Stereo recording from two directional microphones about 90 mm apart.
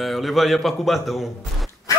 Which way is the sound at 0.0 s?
Centre (ahead or behind).